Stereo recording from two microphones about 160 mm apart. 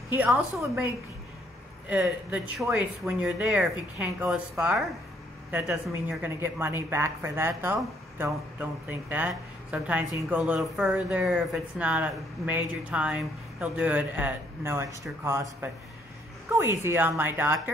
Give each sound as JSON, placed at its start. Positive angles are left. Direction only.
{"t": 0.1, "sound": "speech", "side_deg": -10}
{"t": 1.9, "sound": "speech", "side_deg": -10}
{"t": 16.4, "sound": "a sound", "side_deg": -15}
{"t": 16.8, "sound": "speech", "side_deg": -15}